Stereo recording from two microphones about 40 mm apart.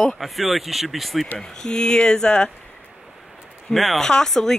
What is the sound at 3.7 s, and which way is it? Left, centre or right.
Speech, centre.